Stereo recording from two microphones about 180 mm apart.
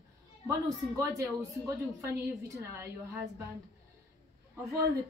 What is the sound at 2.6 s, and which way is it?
Speech, 15° right (ahead or behind).